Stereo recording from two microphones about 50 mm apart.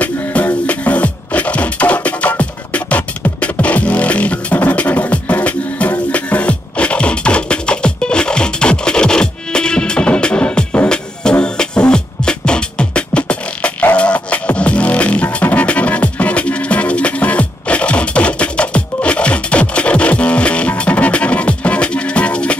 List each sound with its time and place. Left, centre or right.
0.0 s music: left